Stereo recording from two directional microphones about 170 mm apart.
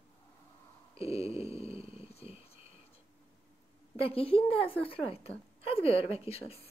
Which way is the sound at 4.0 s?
35° left (ahead or behind).